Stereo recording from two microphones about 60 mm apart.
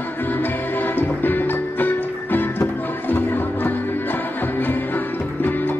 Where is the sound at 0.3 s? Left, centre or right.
Left.